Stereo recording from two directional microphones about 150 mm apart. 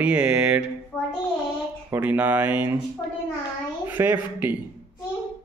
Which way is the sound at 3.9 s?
15° right (ahead or behind).